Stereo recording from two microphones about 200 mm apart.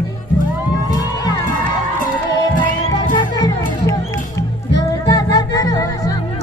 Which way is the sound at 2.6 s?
20° left (ahead or behind).